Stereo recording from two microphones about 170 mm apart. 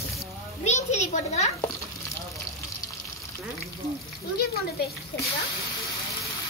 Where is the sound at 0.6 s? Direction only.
40° left (ahead or behind).